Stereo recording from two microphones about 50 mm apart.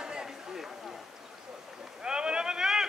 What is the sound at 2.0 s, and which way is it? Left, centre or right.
Sheep, centre.